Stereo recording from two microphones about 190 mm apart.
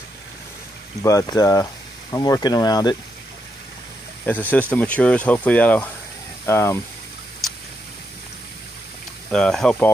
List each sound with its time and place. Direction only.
1.0 s speech: 20° left (ahead or behind)
4.3 s speech: 10° left (ahead or behind)
9.3 s speech: 5° left (ahead or behind)